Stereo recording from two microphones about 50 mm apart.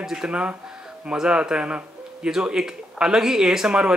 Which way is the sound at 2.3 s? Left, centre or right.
Centre.